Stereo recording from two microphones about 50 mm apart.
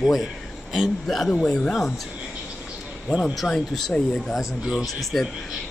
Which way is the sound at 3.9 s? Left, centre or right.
Centre.